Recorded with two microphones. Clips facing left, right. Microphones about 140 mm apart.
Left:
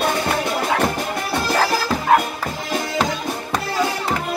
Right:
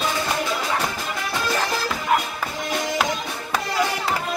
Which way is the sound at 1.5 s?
70° left (ahead or behind).